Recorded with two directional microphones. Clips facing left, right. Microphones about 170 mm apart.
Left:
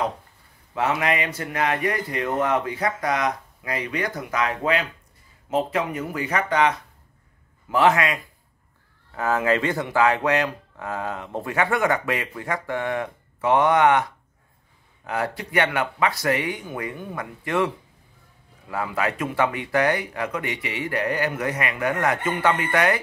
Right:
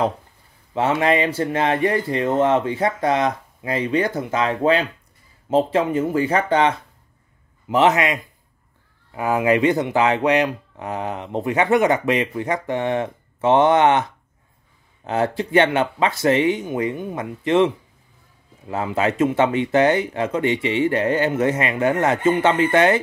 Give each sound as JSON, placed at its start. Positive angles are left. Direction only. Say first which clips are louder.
{"t": 0.7, "sound": "speech", "louder": "right 5 dB", "side_deg": -30}